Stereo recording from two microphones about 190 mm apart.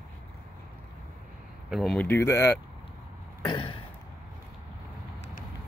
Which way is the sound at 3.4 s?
25° left (ahead or behind).